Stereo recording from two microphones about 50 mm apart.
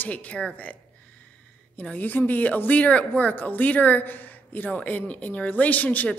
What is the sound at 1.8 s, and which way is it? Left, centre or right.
Speech, left.